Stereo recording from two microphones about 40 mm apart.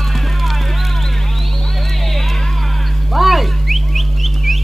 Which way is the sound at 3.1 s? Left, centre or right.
Centre.